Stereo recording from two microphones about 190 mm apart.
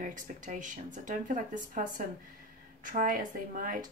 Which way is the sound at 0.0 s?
45° right (ahead or behind).